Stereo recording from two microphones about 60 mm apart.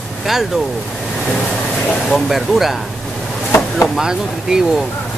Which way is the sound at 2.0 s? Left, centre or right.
Centre.